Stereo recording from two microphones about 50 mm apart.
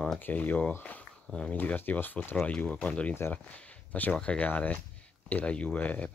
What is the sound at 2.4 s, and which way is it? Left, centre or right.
Speech, left.